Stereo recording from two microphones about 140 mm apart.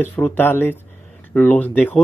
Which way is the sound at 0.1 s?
15° left (ahead or behind).